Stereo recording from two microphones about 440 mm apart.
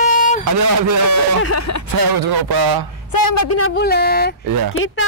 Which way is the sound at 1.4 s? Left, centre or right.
Left.